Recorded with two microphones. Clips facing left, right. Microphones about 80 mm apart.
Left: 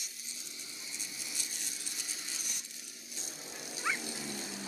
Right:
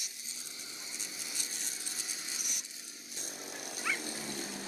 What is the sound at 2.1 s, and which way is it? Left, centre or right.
Coin, centre.